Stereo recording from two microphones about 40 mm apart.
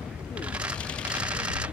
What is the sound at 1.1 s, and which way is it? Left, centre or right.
Typewriter, right.